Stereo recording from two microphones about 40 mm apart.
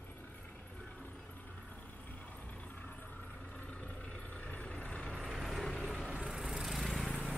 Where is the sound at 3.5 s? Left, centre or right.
Left.